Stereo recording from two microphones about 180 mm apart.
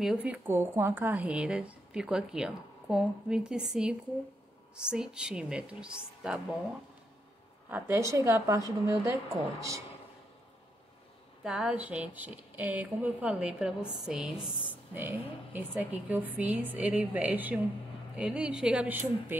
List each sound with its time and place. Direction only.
0.0 s a woman's voice: 5° right (ahead or behind)
7.7 s a woman's voice: 15° right (ahead or behind)
11.4 s a woman's voice: 5° right (ahead or behind)
14.3 s a woman's voice: 30° left (ahead or behind)
15.0 s a woman's voice: 10° right (ahead or behind)